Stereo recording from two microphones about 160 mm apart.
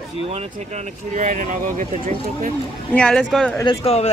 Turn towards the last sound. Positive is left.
turn(degrees=40)  # may be behind; listen again after turning